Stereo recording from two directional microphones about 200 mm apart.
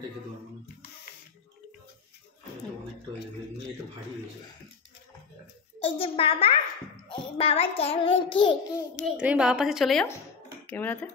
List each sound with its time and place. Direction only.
5.8 s a sound: 25° left (ahead or behind)
7.1 s child singing: 30° left (ahead or behind)
9.0 s a woman's voice: 5° right (ahead or behind)